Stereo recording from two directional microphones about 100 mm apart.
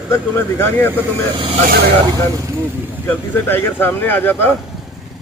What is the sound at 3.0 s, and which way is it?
Speech, 20° left (ahead or behind).